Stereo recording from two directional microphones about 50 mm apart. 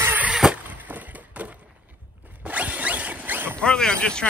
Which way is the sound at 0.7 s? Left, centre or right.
Right.